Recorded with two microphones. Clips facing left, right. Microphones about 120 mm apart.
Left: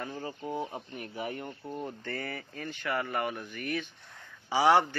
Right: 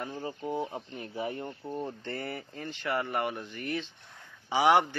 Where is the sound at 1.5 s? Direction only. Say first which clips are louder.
Right 2 dB; 5° right (ahead or behind).